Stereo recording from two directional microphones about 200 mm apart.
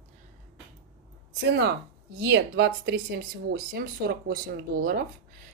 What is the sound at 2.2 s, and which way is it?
Speech, 55° right (ahead or behind).